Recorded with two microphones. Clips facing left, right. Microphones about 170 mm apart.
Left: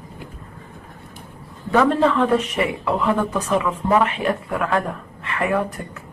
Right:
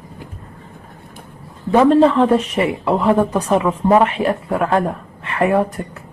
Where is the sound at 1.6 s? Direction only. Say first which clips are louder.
Right 6 dB; 25° right (ahead or behind).